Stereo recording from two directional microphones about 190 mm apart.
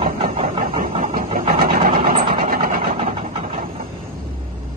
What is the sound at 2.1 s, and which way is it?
Vehicle, 30° right (ahead or behind).